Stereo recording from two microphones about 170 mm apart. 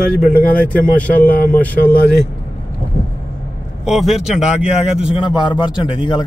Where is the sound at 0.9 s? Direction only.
10° left (ahead or behind).